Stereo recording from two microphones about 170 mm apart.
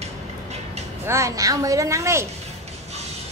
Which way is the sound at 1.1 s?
15° right (ahead or behind).